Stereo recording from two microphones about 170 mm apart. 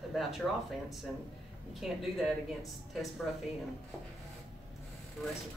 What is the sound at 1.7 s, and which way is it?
Speech, centre (ahead or behind).